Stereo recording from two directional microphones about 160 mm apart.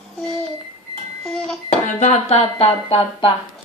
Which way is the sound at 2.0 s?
45° left (ahead or behind).